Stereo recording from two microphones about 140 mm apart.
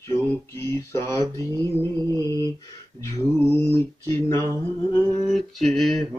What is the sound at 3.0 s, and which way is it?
Speech, 15° left (ahead or behind).